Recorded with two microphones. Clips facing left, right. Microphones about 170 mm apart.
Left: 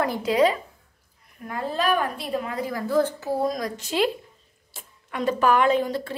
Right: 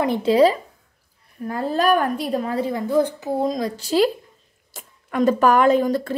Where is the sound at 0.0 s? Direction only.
25° right (ahead or behind).